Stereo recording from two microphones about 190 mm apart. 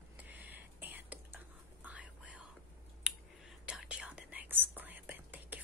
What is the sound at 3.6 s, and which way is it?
Whispering, 5° right (ahead or behind).